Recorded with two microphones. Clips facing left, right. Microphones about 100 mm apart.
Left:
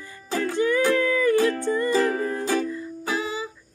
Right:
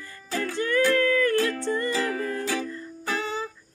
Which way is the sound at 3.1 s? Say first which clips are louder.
Left 1 dB; 5° left (ahead or behind).